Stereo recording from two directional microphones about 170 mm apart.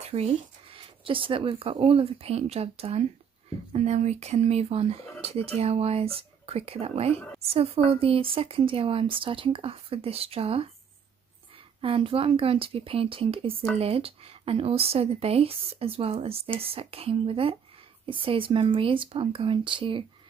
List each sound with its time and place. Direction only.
0.0 s speech: 35° right (ahead or behind)
11.8 s speech: 35° right (ahead or behind)